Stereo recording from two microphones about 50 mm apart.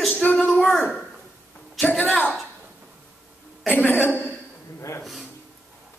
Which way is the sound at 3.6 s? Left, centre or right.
Left.